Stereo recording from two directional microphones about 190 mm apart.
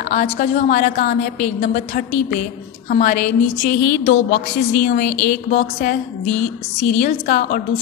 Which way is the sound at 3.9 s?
55° left (ahead or behind).